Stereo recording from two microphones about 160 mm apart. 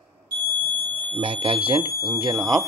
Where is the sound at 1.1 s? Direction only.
35° right (ahead or behind).